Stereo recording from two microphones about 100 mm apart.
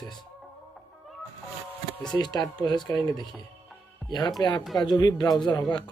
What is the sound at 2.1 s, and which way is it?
Speech, 45° left (ahead or behind).